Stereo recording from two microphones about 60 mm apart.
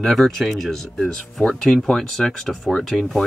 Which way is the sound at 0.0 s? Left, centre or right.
Centre.